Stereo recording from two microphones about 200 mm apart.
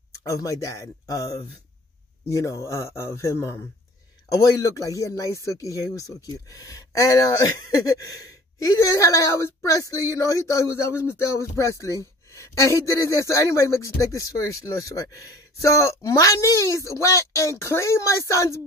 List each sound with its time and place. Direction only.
0.2 s speech: 15° left (ahead or behind)